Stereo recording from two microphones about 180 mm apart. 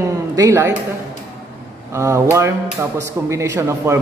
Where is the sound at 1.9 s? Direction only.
15° right (ahead or behind).